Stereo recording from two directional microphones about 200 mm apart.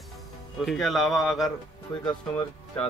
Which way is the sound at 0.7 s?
Centre (ahead or behind).